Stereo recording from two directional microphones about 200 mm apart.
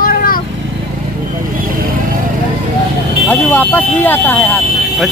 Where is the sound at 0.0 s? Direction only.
45° left (ahead or behind).